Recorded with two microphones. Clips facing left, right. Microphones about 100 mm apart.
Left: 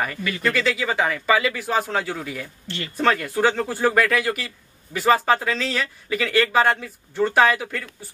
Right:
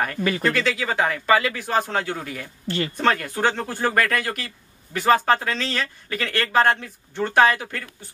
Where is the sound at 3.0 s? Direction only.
Centre (ahead or behind).